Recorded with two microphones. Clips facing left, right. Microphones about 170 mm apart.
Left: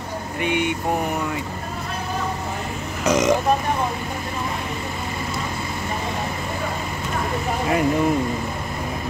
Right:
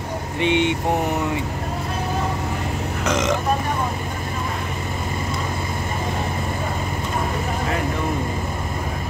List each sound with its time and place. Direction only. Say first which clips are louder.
0.4 s vehicle: right 3 dB; 25° right (ahead or behind)
3.1 s speech: left 4 dB; 10° left (ahead or behind)